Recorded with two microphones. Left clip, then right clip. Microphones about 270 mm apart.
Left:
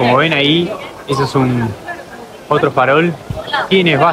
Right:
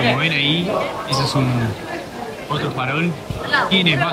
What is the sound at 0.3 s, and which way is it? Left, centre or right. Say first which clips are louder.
Speech: left 6 dB; left.